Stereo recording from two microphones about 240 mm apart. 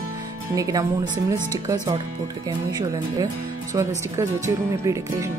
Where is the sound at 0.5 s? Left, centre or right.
Centre.